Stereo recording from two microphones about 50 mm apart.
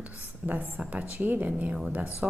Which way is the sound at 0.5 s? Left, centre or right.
Right.